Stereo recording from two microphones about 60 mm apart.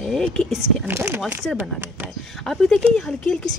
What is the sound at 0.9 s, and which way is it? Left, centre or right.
Speech, right.